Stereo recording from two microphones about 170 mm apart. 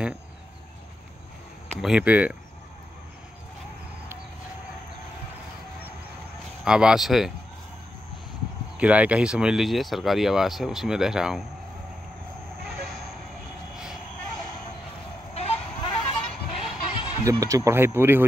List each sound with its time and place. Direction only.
1.8 s speech: 5° right (ahead or behind)
6.6 s speech: 5° right (ahead or behind)
8.7 s speech: 10° right (ahead or behind)
15.3 s a sound: 35° left (ahead or behind)
17.2 s speech: 20° right (ahead or behind)